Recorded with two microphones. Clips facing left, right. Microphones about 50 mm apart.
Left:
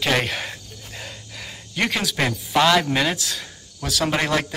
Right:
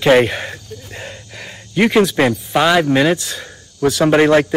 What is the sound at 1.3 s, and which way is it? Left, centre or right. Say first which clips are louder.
Speech: right 9 dB; centre.